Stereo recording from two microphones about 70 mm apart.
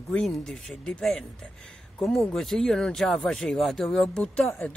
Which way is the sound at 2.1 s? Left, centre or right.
Centre.